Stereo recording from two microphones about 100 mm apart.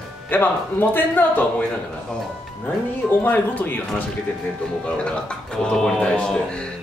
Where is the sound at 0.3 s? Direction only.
20° left (ahead or behind).